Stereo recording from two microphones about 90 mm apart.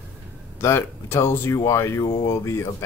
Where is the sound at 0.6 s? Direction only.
30° left (ahead or behind).